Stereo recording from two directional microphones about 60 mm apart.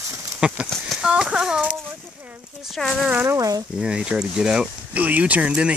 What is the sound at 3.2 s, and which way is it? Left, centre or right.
Speech, right.